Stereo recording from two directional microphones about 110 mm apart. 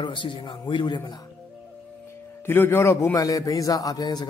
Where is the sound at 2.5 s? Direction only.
20° left (ahead or behind); by 4.2 s 35° left (ahead or behind).